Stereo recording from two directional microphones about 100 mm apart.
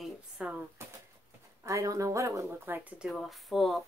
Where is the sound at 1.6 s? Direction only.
30° right (ahead or behind).